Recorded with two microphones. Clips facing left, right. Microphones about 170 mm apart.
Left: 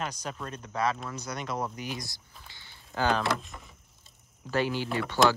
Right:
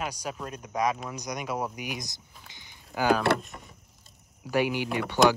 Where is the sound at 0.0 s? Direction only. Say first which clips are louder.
Right 2 dB; 10° right (ahead or behind).